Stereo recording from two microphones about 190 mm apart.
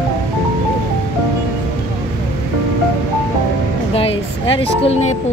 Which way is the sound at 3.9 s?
30° left (ahead or behind).